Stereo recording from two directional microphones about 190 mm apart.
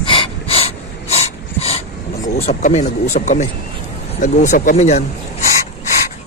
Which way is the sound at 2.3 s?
35° left (ahead or behind).